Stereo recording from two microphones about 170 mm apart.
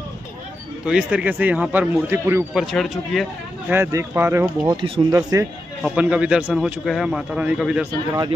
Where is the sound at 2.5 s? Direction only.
Centre (ahead or behind).